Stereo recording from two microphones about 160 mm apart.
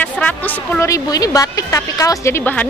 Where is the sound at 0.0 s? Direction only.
10° left (ahead or behind).